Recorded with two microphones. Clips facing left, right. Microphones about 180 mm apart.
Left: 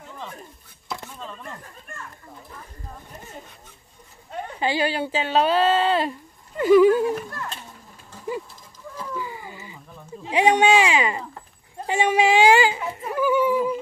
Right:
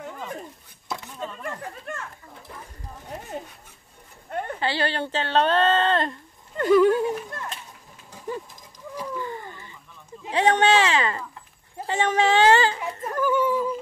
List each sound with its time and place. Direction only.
1.4 s speech: 90° right
3.1 s speech: 75° right (ahead or behind)
4.6 s speech: 15° left (ahead or behind)
9.2 s a sound: 10° left (ahead or behind)
10.3 s speech: 10° left (ahead or behind)